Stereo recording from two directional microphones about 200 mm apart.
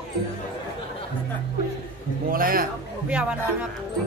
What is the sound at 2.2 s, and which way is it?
Speech, 45° right (ahead or behind).